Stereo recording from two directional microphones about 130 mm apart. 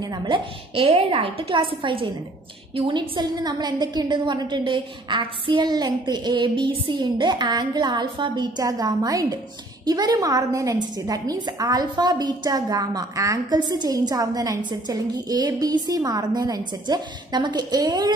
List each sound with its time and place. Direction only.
0.0 s a woman's voice: 35° right (ahead or behind)